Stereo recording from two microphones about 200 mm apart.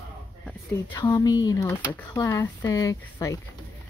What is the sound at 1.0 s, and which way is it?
Speech, 20° left (ahead or behind).